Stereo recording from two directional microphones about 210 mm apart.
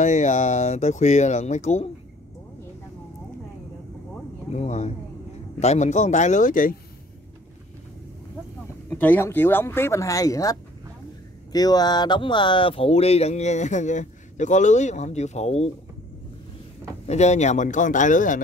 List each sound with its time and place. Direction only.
0.0 s speech: 35° left (ahead or behind)
4.5 s speech: 35° left (ahead or behind)
8.9 s speech: 10° left (ahead or behind); by 15.7 s 30° left (ahead or behind)
17.1 s speech: 35° left (ahead or behind)